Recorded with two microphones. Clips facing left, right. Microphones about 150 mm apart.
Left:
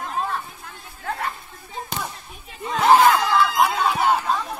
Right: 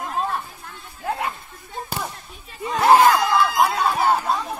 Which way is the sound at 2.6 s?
5° right (ahead or behind).